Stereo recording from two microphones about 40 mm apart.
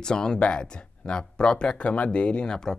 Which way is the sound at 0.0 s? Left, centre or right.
Centre.